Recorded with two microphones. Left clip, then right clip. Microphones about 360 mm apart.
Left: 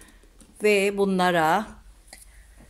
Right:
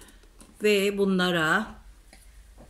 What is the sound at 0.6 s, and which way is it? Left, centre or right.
A woman's voice, centre.